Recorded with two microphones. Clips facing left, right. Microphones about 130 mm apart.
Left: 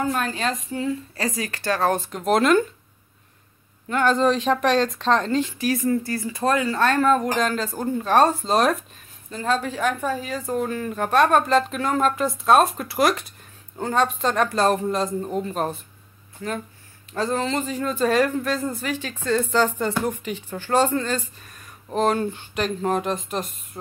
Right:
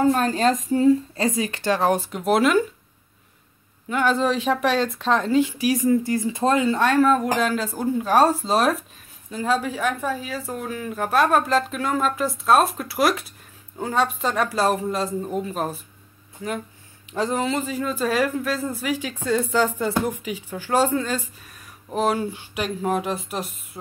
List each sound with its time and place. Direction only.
0.0 s speech: 35° right (ahead or behind)
1.1 s speech: 20° right (ahead or behind); by 2.6 s 5° right (ahead or behind)
3.9 s speech: 5° right (ahead or behind)
17.1 s speech: 15° right (ahead or behind)